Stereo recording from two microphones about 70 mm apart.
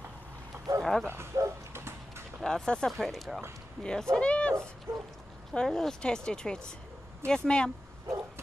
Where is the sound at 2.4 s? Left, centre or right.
Centre.